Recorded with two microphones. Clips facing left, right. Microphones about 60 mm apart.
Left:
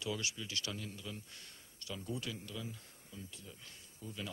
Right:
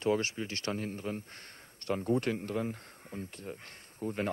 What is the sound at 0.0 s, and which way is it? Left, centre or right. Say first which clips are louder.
Speech: right 10 dB; right.